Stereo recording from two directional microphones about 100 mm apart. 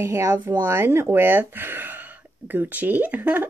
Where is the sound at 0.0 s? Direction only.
30° right (ahead or behind).